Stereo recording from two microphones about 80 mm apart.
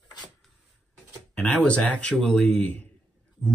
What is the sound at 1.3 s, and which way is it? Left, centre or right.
Speech, centre.